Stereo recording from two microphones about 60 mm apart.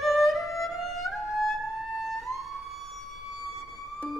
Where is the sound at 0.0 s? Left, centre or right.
Centre.